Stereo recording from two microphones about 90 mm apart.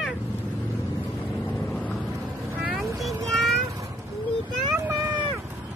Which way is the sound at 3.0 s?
Centre (ahead or behind).